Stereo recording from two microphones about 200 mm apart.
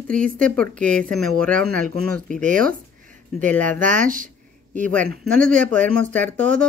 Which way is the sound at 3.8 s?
40° right (ahead or behind).